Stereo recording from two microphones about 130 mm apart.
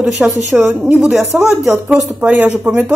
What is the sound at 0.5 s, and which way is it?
Speech, centre (ahead or behind).